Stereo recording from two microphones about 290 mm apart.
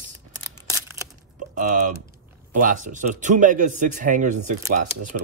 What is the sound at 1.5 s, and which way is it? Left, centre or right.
A man's voice, right.